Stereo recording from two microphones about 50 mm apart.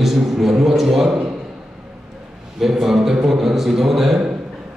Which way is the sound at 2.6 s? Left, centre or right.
Centre.